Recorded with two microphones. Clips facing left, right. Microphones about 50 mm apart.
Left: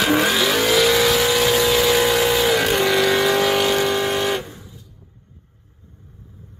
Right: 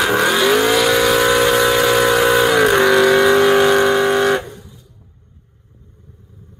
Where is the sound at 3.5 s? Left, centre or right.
Right.